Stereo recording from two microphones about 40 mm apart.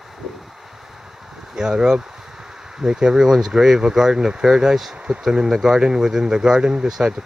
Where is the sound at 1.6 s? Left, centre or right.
Centre.